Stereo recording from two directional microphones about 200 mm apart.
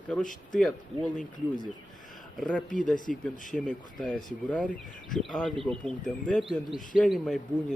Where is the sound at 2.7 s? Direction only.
40° left (ahead or behind).